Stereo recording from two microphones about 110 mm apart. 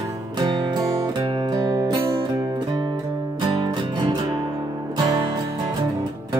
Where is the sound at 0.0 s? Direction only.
40° right (ahead or behind).